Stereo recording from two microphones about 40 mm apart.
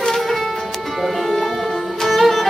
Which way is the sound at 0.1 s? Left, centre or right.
Centre.